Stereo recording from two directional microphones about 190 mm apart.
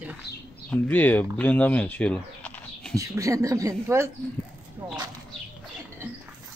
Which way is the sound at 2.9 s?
15° right (ahead or behind).